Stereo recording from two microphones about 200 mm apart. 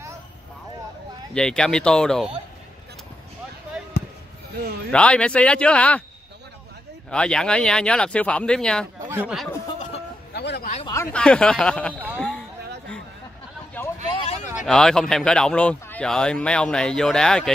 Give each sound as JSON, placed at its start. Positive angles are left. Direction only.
{"t": 1.3, "sound": "speech", "side_deg": 5}
{"t": 3.9, "sound": "basketball bounce", "side_deg": 55}
{"t": 4.9, "sound": "speech", "side_deg": 5}
{"t": 7.1, "sound": "speech", "side_deg": 5}
{"t": 10.3, "sound": "a sound", "side_deg": 55}
{"t": 11.1, "sound": "speech", "side_deg": 5}
{"t": 12.2, "sound": "a sound", "side_deg": 5}
{"t": 14.1, "sound": "a sound", "side_deg": 30}
{"t": 14.7, "sound": "speech", "side_deg": 5}